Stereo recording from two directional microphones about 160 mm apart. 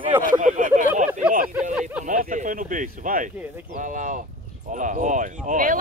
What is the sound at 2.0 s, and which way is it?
Speech, 55° right (ahead or behind).